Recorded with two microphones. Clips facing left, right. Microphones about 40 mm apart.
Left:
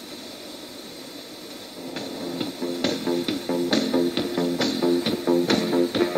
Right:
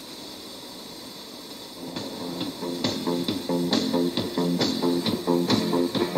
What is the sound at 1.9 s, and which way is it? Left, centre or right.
Music, left.